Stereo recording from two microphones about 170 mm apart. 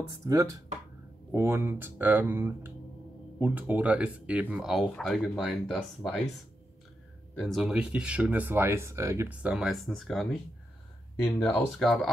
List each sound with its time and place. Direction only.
0.3 s speech: 20° right (ahead or behind); by 6.2 s 5° left (ahead or behind)
7.3 s speech: centre (ahead or behind)
11.2 s speech: 10° left (ahead or behind)